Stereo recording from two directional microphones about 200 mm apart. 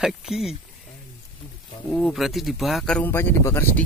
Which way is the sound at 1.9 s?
Centre (ahead or behind).